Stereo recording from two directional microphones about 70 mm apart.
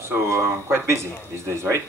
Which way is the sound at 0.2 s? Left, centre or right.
Right.